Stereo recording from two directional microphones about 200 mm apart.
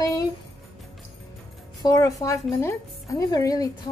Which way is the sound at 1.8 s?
15° left (ahead or behind).